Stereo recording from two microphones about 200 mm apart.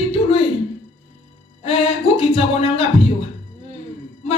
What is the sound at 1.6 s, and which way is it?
Music, 30° left (ahead or behind).